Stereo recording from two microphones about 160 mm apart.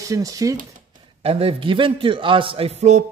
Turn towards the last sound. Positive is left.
turn(degrees=-45)  # may be behind; listen again after turning